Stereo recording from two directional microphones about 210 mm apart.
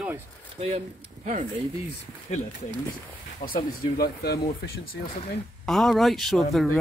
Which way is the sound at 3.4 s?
45° left (ahead or behind).